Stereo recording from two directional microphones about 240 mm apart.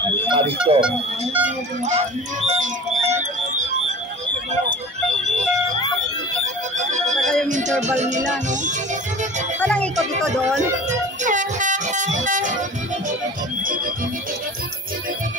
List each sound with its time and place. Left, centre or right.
0.3 s speech: right
0.7 s speech: centre
6.4 s music: right
7.2 s music: centre
7.4 s speech: right
7.8 s music: right
9.6 s speech: centre
10.6 s speech: right